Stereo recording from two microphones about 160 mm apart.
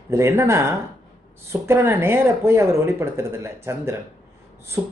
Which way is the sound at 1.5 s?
15° right (ahead or behind).